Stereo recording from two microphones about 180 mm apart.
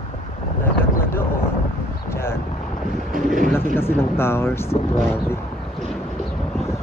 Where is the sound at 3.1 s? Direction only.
50° right (ahead or behind).